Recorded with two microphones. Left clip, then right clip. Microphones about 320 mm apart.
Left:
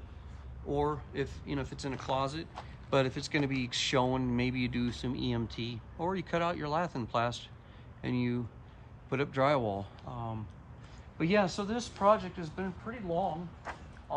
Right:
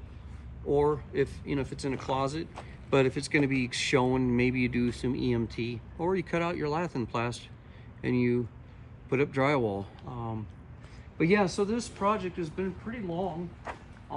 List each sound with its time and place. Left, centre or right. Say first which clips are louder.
0.7 s speech: right 6 dB; centre